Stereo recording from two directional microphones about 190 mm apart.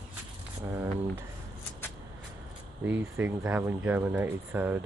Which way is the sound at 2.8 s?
10° right (ahead or behind).